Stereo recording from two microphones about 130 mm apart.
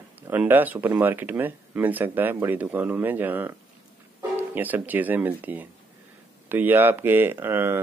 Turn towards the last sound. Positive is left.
turn(degrees=-15)  # may be behind; listen again after turning